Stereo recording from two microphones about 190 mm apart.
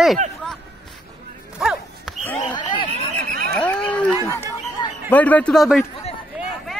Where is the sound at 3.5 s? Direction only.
10° left (ahead or behind).